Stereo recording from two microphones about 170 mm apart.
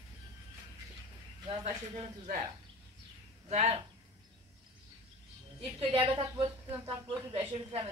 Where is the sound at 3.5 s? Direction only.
40° right (ahead or behind).